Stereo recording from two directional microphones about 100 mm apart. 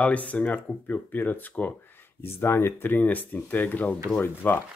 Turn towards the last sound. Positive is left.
turn(degrees=20)  # may be behind; listen again after turning